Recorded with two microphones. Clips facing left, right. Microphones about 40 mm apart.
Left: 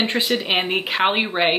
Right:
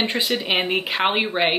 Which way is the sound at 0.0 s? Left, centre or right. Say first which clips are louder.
Left 2 dB; centre.